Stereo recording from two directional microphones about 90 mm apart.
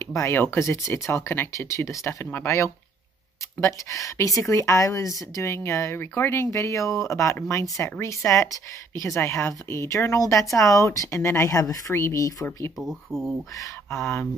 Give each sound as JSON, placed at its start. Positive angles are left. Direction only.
{"t": 0.1, "sound": "a woman's voice", "side_deg": 30}
{"t": 6.5, "sound": "a woman's voice", "side_deg": 35}
{"t": 12.8, "sound": "speech", "side_deg": 5}
{"t": 13.8, "sound": "a woman's voice", "side_deg": 30}